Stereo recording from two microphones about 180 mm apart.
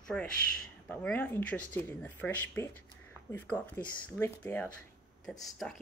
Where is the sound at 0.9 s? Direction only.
5° left (ahead or behind).